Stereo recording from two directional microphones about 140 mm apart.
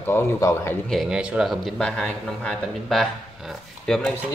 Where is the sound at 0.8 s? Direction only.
Centre (ahead or behind).